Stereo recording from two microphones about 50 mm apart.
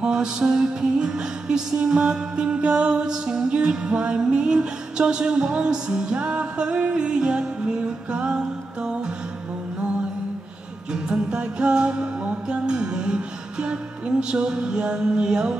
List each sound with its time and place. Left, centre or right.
0.0 s music: centre
10.9 s music: centre